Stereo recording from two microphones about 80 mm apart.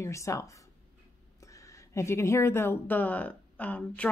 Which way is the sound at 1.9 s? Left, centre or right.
Left.